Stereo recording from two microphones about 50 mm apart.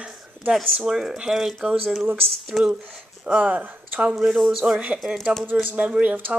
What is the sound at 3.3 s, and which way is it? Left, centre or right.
Speech, right.